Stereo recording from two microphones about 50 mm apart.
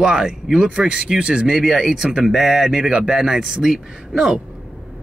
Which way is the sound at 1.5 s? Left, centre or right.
Centre.